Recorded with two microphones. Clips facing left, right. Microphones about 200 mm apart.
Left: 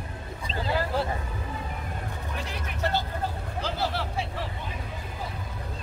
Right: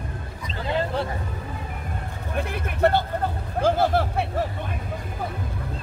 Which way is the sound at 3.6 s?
50° right (ahead or behind).